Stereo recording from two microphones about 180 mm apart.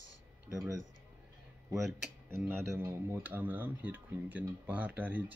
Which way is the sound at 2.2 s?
15° right (ahead or behind).